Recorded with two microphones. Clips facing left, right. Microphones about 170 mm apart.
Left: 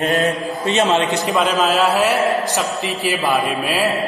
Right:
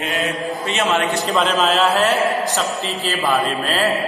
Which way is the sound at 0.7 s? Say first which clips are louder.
Left 4 dB; 35° left (ahead or behind).